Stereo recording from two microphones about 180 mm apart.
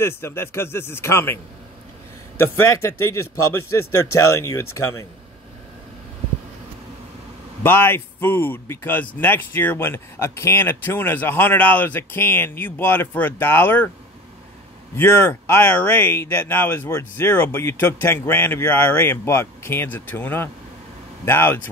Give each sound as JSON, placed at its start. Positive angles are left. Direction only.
{"t": 0.0, "sound": "speech", "side_deg": 15}
{"t": 4.4, "sound": "speech", "side_deg": 15}
{"t": 7.6, "sound": "speech", "side_deg": 10}
{"t": 15.0, "sound": "speech", "side_deg": 10}